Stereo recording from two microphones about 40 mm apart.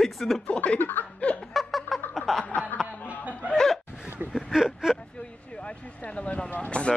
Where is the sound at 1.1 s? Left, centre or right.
Left.